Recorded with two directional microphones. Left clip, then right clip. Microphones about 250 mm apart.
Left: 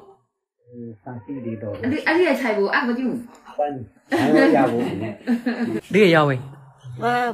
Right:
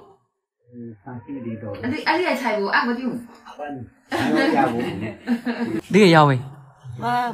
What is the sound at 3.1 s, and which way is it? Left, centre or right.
Speech, centre.